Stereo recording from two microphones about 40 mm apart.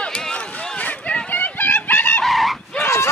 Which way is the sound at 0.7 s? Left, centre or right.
Left.